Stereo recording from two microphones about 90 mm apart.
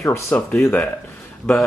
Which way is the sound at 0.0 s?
30° left (ahead or behind).